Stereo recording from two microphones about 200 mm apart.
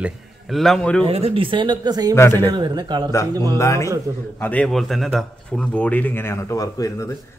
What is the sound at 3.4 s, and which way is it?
A man's voice, 15° left (ahead or behind).